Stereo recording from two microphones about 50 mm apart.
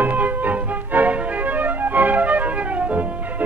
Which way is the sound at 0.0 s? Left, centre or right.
Right.